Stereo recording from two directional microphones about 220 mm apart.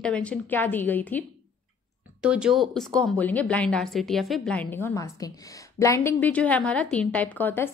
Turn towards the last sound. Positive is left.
turn(degrees=10)  # may be behind; listen again after turning